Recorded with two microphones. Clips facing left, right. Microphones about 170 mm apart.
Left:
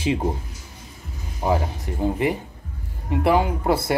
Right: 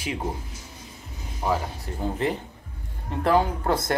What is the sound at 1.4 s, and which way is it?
Speech, 25° left (ahead or behind).